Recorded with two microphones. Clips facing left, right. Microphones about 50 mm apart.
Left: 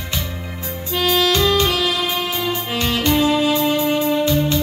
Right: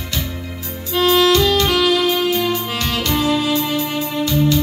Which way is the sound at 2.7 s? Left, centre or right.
Left.